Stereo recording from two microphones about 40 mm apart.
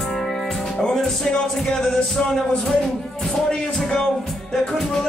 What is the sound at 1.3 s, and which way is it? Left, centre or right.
Music, left.